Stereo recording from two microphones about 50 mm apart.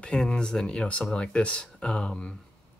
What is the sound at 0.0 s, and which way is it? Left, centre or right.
Speech, centre.